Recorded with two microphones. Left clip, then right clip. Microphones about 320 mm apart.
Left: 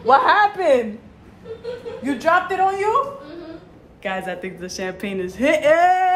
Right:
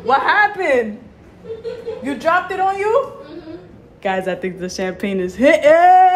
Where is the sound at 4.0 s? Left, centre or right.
Centre.